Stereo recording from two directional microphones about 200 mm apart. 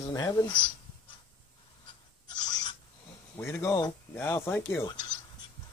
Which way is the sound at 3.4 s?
10° left (ahead or behind).